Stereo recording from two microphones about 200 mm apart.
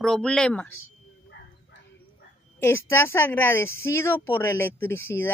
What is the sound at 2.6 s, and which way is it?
Speech, 10° left (ahead or behind).